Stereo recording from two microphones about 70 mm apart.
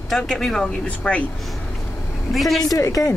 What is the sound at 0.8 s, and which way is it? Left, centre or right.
Speech, left.